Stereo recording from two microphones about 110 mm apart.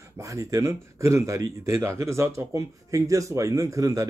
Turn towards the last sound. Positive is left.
turn(degrees=-30)  # may be behind; listen again after turning